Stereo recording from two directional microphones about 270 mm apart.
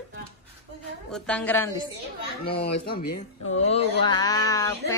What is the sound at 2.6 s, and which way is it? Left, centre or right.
Speech, left.